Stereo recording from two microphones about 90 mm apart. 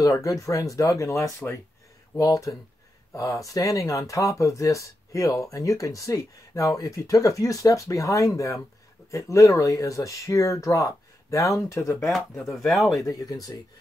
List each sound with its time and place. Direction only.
0.0 s speech: 40° left (ahead or behind)
1.4 s speech: 10° left (ahead or behind)
2.1 s speech: 40° left (ahead or behind)
12.1 s speech: 5° left (ahead or behind)
13.0 s speech: 40° left (ahead or behind)